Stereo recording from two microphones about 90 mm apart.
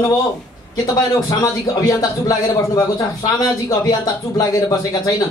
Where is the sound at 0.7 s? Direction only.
45° left (ahead or behind).